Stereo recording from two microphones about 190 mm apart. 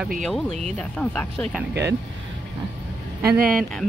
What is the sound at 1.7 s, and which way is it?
Speech, 65° right (ahead or behind).